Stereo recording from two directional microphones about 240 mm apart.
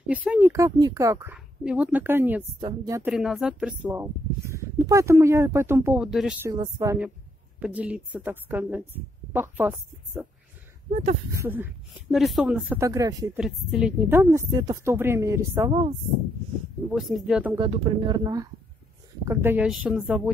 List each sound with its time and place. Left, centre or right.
0.0 s speech: centre
6.5 s a woman's voice: centre
11.3 s speech: centre
13.4 s speech: centre
16.9 s a woman's voice: centre
17.6 s a woman's voice: right; by 20.2 s centre